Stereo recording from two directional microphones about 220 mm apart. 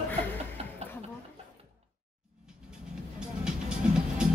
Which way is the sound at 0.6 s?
25° right (ahead or behind).